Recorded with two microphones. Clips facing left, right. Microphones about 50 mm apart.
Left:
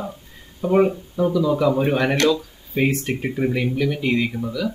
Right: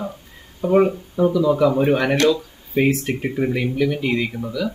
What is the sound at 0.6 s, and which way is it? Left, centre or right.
Speech, centre.